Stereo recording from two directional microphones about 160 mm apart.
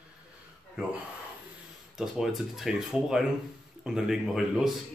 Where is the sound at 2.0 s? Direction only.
Centre (ahead or behind).